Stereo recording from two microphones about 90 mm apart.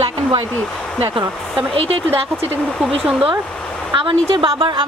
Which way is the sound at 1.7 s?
90° right.